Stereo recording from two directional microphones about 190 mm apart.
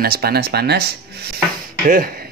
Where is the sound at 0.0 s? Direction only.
55° right (ahead or behind).